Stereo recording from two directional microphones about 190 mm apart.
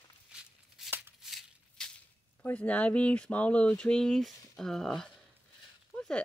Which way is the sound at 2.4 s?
5° left (ahead or behind).